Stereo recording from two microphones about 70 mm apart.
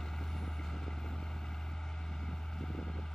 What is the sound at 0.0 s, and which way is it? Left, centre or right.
Vehicle, centre.